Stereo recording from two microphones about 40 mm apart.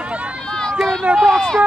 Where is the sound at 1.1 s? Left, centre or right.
Right.